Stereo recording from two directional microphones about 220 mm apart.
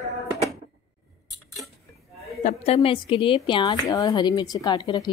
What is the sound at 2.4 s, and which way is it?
A woman's voice, 35° left (ahead or behind).